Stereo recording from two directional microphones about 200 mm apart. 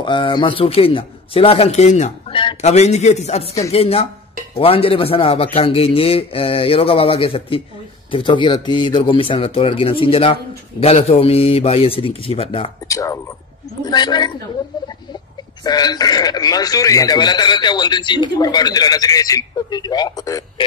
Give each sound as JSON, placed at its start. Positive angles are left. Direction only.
{"t": 0.0, "sound": "a man's voice", "side_deg": 25}
{"t": 12.8, "sound": "a man's voice", "side_deg": 15}
{"t": 15.6, "sound": "a man's voice", "side_deg": 20}